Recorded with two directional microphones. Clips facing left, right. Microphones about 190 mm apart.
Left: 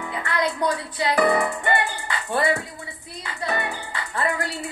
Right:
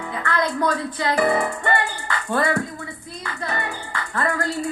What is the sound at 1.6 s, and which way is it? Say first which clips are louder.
Music: right 1 dB; 20° left (ahead or behind).